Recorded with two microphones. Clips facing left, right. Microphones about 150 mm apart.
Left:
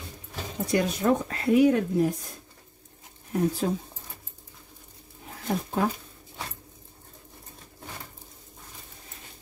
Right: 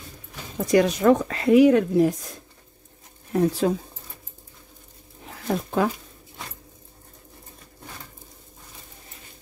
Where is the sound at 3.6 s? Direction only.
90° right.